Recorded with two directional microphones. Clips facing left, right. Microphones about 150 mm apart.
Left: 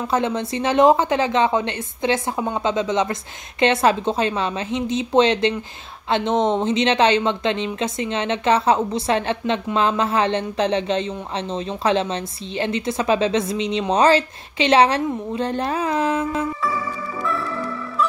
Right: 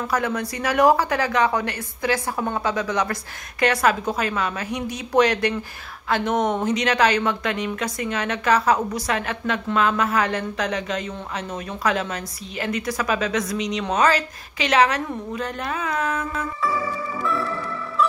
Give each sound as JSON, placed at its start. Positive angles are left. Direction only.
{"t": 0.0, "sound": "a woman's voice", "side_deg": 25}